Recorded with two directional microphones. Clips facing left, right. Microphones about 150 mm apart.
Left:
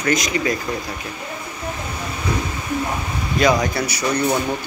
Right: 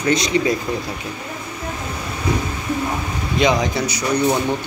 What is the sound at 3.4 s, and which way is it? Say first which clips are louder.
Speech: even; 15° right (ahead or behind).